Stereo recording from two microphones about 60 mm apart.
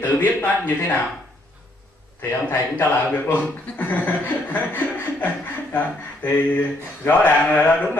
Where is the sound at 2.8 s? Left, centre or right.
Left.